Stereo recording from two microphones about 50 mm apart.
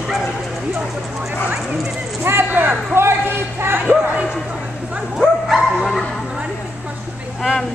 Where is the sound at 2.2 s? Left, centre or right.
Right.